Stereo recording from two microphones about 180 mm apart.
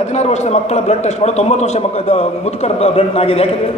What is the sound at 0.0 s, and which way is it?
A man's voice, 40° left (ahead or behind).